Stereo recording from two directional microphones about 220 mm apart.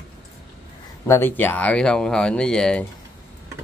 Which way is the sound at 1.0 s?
10° left (ahead or behind).